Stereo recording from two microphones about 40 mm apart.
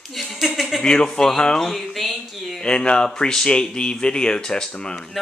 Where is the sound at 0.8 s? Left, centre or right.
Centre.